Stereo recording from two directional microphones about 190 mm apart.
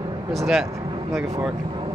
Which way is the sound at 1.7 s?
25° right (ahead or behind).